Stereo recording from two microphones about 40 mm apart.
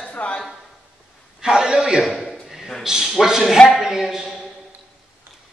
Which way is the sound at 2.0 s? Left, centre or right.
Centre.